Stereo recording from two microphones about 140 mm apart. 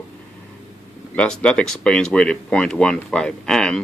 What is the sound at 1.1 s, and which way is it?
Speech, 10° left (ahead or behind).